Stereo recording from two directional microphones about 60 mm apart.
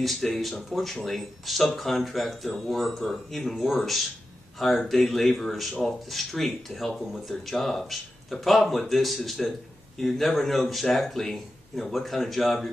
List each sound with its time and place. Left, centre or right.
0.0 s speech: centre